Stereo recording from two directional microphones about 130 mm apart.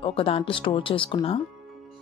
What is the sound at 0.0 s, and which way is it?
Speech, 45° left (ahead or behind).